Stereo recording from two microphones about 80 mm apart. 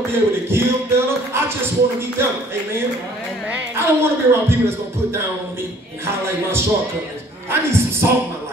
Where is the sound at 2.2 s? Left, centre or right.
Right.